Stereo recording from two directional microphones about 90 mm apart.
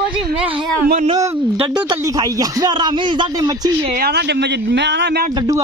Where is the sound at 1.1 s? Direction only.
45° right (ahead or behind).